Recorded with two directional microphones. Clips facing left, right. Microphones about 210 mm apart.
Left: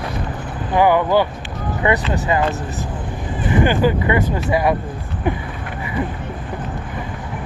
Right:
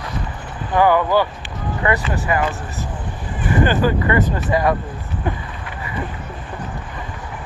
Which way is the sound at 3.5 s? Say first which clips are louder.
Left 1 dB; 15° left (ahead or behind).